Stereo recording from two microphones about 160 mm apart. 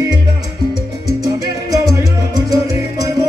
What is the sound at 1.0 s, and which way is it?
Salsa music, 85° left.